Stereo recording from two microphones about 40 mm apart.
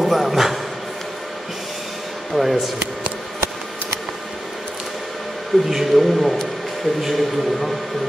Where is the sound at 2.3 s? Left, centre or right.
Centre.